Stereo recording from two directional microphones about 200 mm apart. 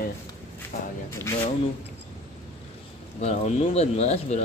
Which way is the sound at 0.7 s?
45° left (ahead or behind).